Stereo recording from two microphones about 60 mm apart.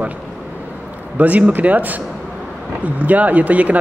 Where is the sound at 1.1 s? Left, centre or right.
Right.